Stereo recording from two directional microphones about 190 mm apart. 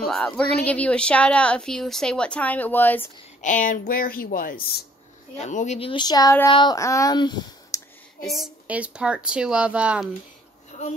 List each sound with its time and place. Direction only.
0.0 s a sound: 5° left (ahead or behind)
0.6 s a woman's voice: 5° left (ahead or behind)
3.3 s speech: 40° left (ahead or behind)
5.4 s speech: 40° left (ahead or behind); by 7.8 s 20° left (ahead or behind)
8.2 s a woman's voice: centre (ahead or behind)